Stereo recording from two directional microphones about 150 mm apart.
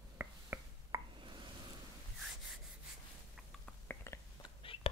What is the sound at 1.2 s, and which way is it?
Plop, 35° right (ahead or behind).